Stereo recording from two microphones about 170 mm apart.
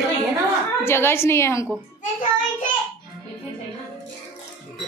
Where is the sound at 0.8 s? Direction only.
15° left (ahead or behind).